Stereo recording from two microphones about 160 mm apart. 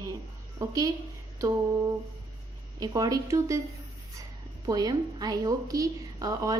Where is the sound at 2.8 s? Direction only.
20° right (ahead or behind).